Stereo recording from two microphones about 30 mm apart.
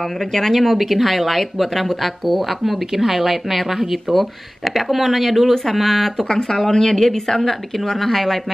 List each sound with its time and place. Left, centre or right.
0.3 s speech: centre
6.2 s speech: centre